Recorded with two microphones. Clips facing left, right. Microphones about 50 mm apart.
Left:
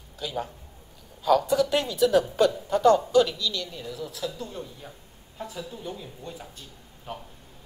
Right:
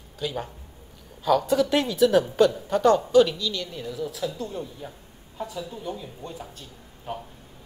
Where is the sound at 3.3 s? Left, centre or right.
Right.